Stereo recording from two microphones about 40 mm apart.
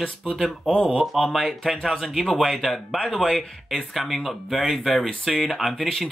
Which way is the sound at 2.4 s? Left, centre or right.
Centre.